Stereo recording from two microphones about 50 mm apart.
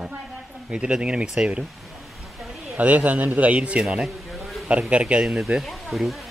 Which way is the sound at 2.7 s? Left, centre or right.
Right.